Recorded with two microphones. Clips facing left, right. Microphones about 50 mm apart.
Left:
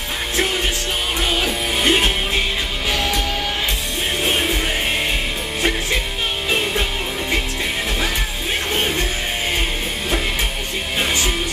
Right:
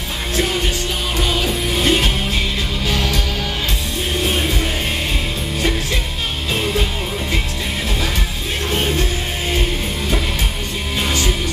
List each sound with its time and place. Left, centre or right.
1.2 s music: left